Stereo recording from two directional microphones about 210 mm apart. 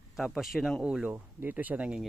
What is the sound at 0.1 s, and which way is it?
Speech, centre (ahead or behind).